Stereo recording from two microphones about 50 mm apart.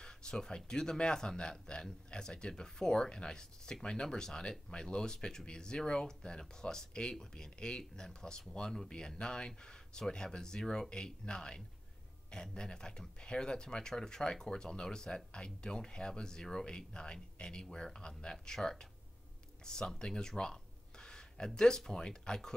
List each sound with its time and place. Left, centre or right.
0.0 s speech: centre
21.0 s a sound: centre
21.5 s speech: centre